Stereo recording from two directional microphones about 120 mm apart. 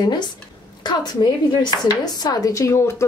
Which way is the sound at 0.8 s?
35° left (ahead or behind).